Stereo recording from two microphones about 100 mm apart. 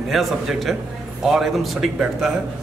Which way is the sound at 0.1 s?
Centre (ahead or behind).